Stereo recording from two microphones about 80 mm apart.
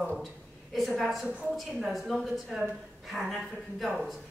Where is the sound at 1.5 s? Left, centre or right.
Centre.